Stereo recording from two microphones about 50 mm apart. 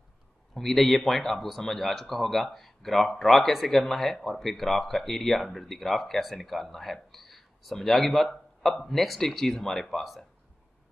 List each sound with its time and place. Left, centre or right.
0.6 s speech: centre